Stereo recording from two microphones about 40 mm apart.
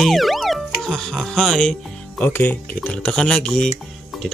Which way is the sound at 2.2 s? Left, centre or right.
Left.